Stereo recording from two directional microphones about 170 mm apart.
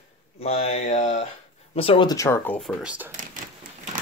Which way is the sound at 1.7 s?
35° left (ahead or behind).